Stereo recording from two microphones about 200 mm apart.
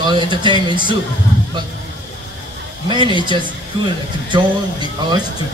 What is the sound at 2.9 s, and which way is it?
A man's voice, 25° right (ahead or behind).